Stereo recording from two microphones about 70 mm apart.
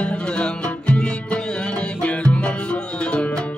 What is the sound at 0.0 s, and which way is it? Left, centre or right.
Music, centre.